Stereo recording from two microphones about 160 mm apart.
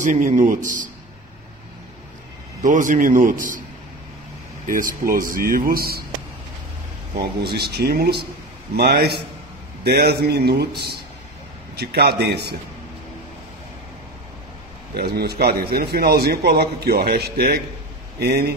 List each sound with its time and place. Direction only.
0.0 s a man's voice: 50° right (ahead or behind)
2.6 s speech: 55° right (ahead or behind)
4.6 s speech: 55° right (ahead or behind)
7.2 s a man's voice: 80° right
11.7 s speech: 80° right
15.0 s a man's voice: 85° right